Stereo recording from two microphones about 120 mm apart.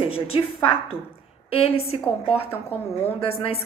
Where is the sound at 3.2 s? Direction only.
55° left (ahead or behind).